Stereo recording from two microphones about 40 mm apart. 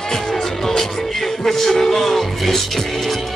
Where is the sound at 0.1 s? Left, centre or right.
Centre.